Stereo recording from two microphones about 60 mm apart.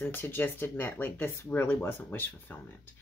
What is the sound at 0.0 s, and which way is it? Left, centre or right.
Speech, left.